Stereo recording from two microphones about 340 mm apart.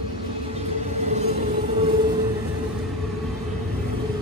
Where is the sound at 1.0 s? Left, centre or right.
Centre.